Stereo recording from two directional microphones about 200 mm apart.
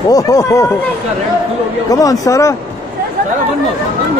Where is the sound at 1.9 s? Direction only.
15° left (ahead or behind).